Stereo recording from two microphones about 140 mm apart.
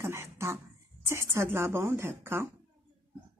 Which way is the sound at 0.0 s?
20° right (ahead or behind).